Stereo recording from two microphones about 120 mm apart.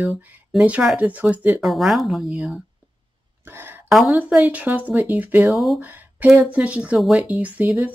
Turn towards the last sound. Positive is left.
turn(degrees=-15)  # may be behind; listen again after turning